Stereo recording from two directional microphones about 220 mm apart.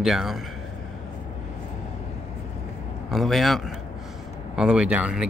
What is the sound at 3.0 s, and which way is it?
Speech, centre (ahead or behind).